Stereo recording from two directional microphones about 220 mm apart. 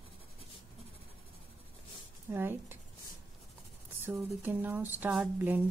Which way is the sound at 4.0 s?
10° right (ahead or behind).